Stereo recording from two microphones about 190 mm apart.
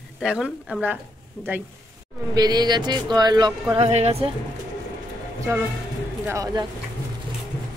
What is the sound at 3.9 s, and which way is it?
Speech, 35° right (ahead or behind).